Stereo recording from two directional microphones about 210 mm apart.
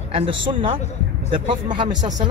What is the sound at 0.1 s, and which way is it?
Speech, 25° right (ahead or behind).